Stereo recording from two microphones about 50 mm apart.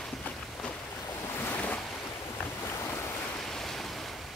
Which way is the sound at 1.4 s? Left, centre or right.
Left.